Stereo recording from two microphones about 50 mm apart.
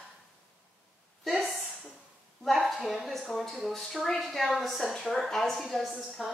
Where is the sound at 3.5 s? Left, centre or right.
Centre.